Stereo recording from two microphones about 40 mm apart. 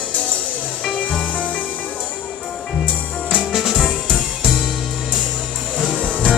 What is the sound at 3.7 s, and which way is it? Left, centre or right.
Music, right.